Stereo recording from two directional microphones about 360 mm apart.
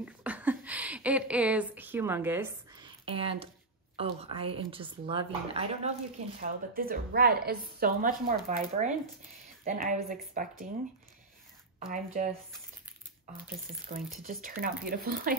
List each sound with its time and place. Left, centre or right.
0.0 s a woman's voice: centre; by 10.7 s right
11.9 s a woman's voice: right
13.9 s a woman's voice: centre